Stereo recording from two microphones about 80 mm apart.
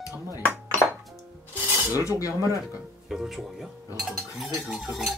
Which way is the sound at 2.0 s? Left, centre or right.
Left.